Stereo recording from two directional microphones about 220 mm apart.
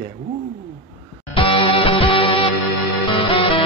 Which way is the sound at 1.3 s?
25° left (ahead or behind).